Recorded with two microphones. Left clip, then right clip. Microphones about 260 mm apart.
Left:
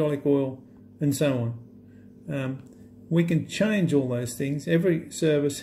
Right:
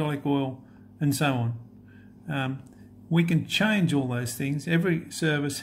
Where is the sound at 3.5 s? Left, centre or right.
Centre.